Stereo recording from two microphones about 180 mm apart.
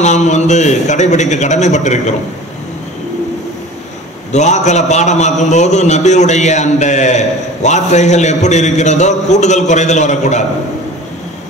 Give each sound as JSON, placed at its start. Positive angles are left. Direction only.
{"t": 0.0, "sound": "a man's voice", "side_deg": 40}
{"t": 4.3, "sound": "a man's voice", "side_deg": 40}